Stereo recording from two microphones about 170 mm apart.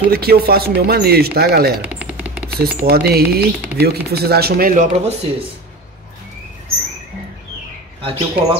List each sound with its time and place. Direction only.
0.1 s speech: 65° right (ahead or behind)
1.8 s music: 10° right (ahead or behind)
2.5 s speech: 65° right (ahead or behind)
4.9 s speech: 40° right (ahead or behind)
8.0 s speech: 30° right (ahead or behind)